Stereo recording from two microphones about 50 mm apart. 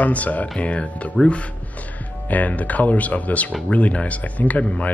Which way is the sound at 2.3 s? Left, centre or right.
Left.